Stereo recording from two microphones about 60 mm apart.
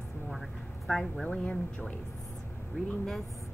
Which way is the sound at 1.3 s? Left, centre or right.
Left.